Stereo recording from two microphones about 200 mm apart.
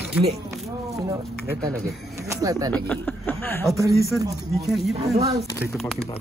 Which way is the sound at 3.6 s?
15° right (ahead or behind).